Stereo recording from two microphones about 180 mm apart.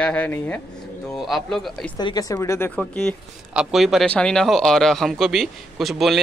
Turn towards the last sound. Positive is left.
turn(degrees=0)  # may be behind; listen again after turning